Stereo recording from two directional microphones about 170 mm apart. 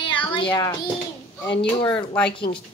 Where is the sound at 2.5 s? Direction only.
25° left (ahead or behind).